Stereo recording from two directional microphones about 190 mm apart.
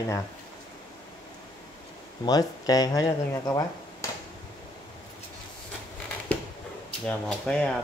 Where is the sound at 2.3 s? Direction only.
20° left (ahead or behind).